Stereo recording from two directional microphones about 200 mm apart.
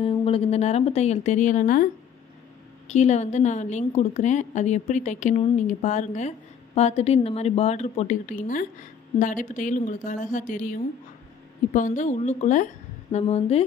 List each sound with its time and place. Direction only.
0.0 s a woman's voice: 30° left (ahead or behind)
2.9 s a woman's voice: 35° left (ahead or behind)